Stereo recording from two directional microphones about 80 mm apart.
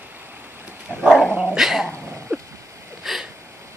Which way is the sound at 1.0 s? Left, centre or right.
Centre.